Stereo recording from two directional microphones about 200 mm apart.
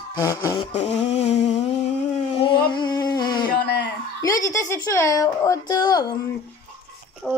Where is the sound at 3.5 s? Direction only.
55° left (ahead or behind).